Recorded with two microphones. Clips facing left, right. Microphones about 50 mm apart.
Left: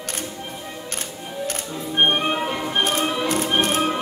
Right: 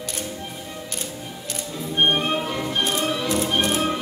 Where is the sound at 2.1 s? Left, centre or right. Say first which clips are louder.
Left 1 dB; left.